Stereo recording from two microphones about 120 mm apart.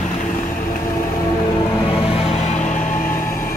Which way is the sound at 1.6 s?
40° left (ahead or behind).